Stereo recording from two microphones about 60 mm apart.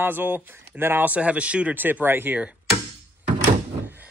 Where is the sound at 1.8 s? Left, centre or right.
Right.